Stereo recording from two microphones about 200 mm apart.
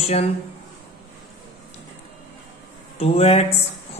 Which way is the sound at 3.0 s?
30° left (ahead or behind).